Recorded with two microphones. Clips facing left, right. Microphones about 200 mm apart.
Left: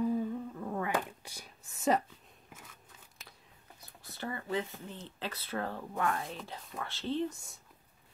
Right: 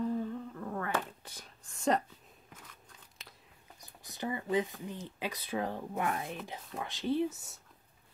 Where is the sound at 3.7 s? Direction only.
15° right (ahead or behind).